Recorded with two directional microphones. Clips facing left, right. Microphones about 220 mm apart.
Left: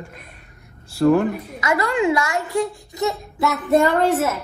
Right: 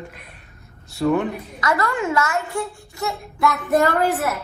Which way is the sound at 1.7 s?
15° left (ahead or behind).